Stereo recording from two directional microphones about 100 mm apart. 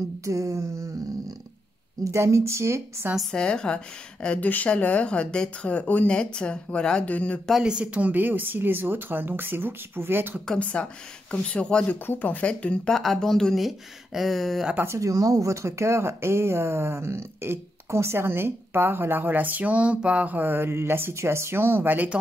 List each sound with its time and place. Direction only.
0.2 s a sound: 35° right (ahead or behind)
2.0 s speech: 30° right (ahead or behind)
3.2 s a woman's voice: 5° left (ahead or behind)
7.5 s speech: 10° right (ahead or behind)
10.4 s a woman's voice: 10° left (ahead or behind)
14.7 s speech: 20° right (ahead or behind)
15.0 s speech: 35° right (ahead or behind); by 22.1 s 20° right (ahead or behind)